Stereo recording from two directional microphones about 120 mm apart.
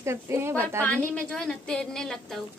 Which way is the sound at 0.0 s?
25° right (ahead or behind).